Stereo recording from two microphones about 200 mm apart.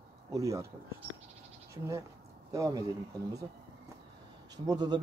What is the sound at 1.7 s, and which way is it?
Speech, 15° right (ahead or behind).